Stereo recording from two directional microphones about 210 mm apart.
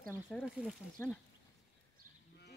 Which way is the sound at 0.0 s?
5° left (ahead or behind).